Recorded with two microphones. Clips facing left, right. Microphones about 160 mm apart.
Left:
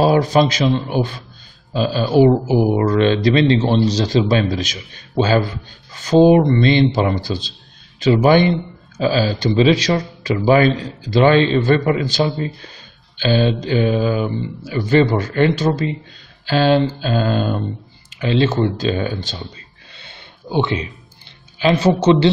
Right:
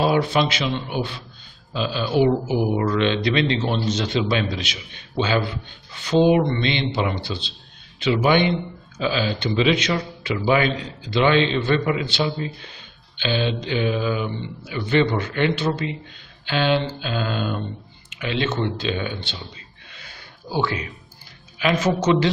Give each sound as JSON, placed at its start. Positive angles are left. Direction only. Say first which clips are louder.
{"t": 0.0, "sound": "a man's voice", "louder": "left 5 dB", "side_deg": 40}
{"t": 19.9, "sound": "gasp", "louder": "left 2 dB", "side_deg": 30}
{"t": 21.5, "sound": "speech", "louder": "left 5 dB", "side_deg": 30}